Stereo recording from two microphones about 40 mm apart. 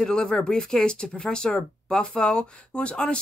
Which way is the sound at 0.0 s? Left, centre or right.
Centre.